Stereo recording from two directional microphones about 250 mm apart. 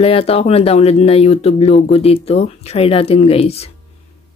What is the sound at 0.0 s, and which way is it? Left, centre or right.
Speech, left.